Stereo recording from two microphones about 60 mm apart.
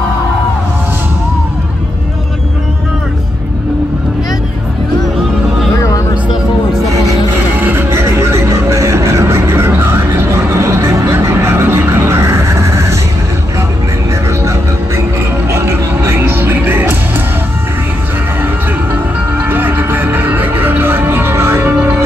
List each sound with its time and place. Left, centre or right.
5.8 s music: left
7.5 s music: right
15.5 s music: right
19.3 s music: right